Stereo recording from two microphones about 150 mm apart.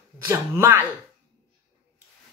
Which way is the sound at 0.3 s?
20° right (ahead or behind).